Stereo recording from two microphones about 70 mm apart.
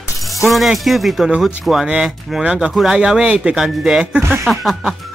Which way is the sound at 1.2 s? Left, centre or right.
Centre.